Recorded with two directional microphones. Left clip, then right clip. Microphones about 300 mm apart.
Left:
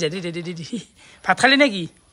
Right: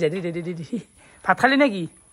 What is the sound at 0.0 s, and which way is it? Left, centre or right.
A woman's voice, centre.